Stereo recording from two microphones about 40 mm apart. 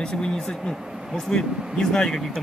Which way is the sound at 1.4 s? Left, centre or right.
Centre.